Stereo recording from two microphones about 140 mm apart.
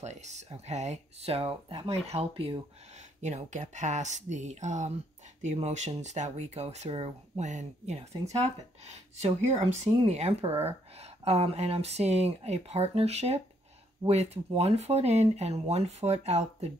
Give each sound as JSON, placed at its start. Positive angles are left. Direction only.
{"t": 0.0, "sound": "speech", "side_deg": -55}
{"t": 3.2, "sound": "speech", "side_deg": -55}